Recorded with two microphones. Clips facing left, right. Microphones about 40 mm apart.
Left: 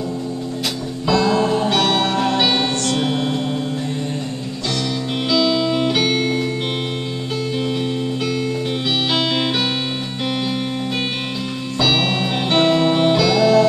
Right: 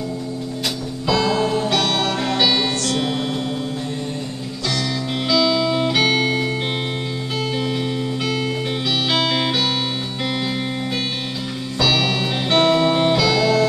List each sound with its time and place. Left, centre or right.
1.4 s music: left
5.3 s music: centre
9.1 s music: centre
11.8 s music: left; by 13.6 s centre